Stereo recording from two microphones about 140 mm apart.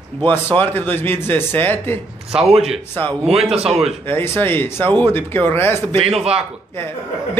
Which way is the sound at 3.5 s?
45° right (ahead or behind).